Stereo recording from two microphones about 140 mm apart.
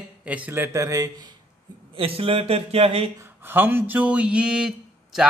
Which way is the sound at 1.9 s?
40° right (ahead or behind).